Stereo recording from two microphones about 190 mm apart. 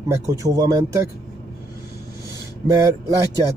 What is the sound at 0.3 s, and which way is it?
Speech, 20° right (ahead or behind).